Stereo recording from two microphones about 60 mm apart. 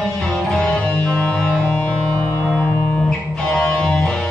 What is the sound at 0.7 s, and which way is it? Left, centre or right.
Music, centre.